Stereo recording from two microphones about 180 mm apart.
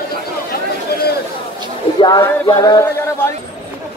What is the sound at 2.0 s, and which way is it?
Music, 25° left (ahead or behind).